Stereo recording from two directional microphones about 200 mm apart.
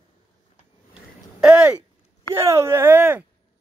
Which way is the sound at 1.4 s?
5° right (ahead or behind).